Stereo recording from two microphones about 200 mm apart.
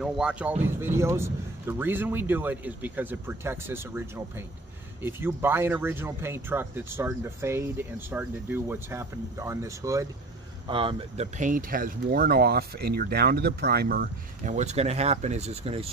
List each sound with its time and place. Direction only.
0.0 s speech: 5° right (ahead or behind)
10.7 s speech: 25° right (ahead or behind)
11.3 s speech: 40° right (ahead or behind)